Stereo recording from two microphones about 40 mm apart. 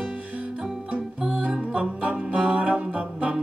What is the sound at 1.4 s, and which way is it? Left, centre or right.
Music, right.